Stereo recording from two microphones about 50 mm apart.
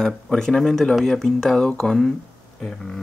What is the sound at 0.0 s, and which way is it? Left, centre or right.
Speech, centre.